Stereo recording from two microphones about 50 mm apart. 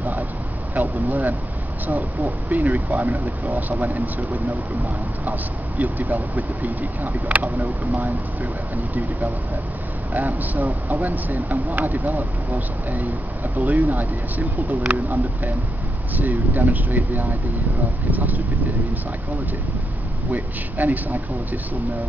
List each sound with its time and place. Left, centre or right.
0.7 s speech: right
10.1 s speech: right
20.2 s speech: right